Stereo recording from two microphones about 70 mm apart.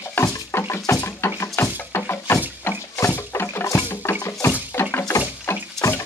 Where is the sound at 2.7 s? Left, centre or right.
Left.